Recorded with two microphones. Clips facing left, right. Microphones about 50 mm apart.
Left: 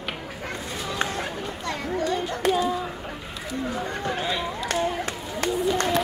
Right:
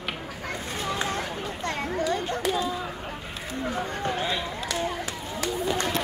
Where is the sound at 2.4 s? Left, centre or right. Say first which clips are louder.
Left 8 dB; left.